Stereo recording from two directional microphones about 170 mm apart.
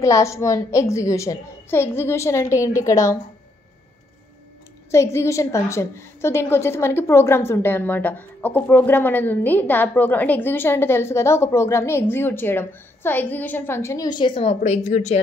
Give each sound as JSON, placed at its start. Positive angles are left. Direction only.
{"t": 0.0, "sound": "a woman's voice", "side_deg": 15}
{"t": 4.9, "sound": "a woman's voice", "side_deg": 15}